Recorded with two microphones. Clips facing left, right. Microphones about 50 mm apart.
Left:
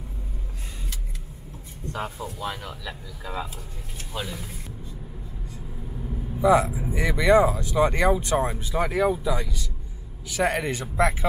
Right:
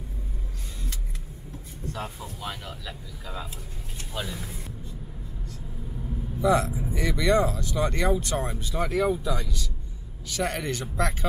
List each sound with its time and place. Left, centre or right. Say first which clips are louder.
2.5 s speech: left 3 dB; centre
3.3 s speech: left 5 dB; left
4.1 s speech: left 1 dB; centre
6.3 s speech: left 4 dB; centre